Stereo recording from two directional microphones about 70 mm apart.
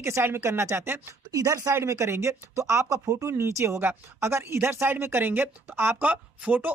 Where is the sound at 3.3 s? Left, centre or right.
Right.